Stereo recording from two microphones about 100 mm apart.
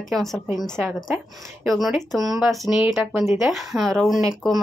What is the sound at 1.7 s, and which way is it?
Speech, centre (ahead or behind).